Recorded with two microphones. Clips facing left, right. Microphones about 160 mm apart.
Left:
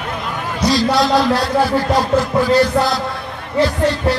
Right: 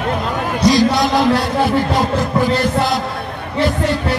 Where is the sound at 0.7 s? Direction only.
20° right (ahead or behind).